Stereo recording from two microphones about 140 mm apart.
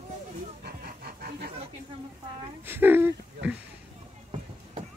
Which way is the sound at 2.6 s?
15° right (ahead or behind).